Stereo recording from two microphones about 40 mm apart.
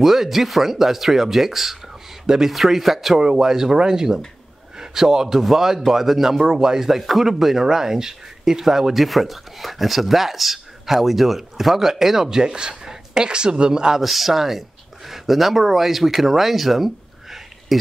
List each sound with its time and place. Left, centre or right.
0.0 s speech: centre
3.2 s a man's voice: centre
6.9 s speech: centre; by 14.0 s right
14.0 s speech: centre